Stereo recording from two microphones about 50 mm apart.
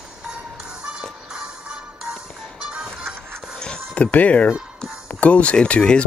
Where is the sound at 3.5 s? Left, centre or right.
Centre.